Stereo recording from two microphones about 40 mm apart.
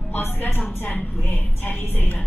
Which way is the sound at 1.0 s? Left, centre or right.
Left.